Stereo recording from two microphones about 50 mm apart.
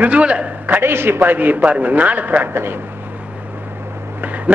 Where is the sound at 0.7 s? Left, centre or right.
Right.